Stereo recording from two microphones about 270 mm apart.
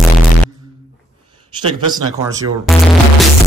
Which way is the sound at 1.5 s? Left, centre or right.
Centre.